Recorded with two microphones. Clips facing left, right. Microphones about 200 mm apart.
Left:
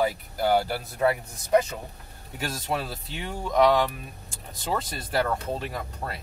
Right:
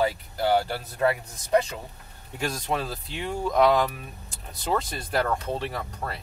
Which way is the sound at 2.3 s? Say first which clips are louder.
Right 2 dB; 5° left (ahead or behind).